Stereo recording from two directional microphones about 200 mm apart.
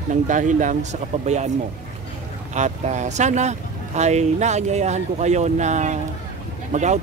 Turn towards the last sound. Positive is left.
turn(degrees=-35)  # may be behind; listen again after turning